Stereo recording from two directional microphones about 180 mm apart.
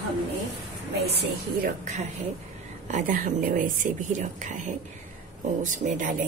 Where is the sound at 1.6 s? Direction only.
40° right (ahead or behind).